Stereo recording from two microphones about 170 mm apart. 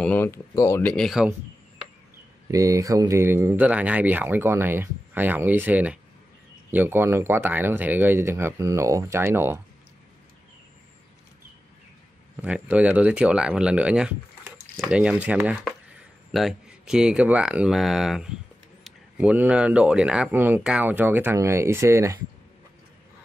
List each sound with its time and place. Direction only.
0.0 s speech: 10° left (ahead or behind)
0.9 s speech: centre (ahead or behind)
2.4 s speech: 20° right (ahead or behind)
12.4 s speech: 10° right (ahead or behind)